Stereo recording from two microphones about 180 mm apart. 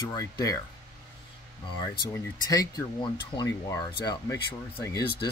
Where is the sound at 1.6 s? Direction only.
25° left (ahead or behind).